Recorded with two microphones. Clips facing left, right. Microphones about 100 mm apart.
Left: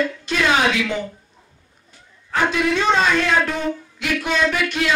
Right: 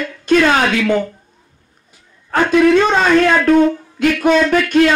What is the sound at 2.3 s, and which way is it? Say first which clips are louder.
Speech: right 8 dB; 50° right (ahead or behind).